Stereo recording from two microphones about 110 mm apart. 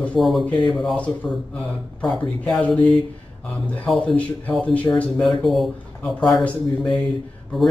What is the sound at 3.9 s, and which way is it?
Speech, 10° left (ahead or behind).